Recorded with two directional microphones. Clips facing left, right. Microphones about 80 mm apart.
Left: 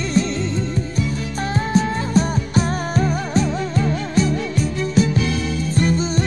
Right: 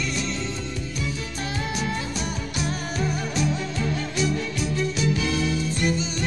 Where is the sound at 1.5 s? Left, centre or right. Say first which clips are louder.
Left 9 dB; left.